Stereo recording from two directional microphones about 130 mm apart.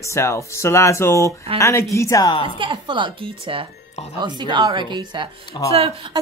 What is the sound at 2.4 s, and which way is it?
A woman's voice, 40° right (ahead or behind).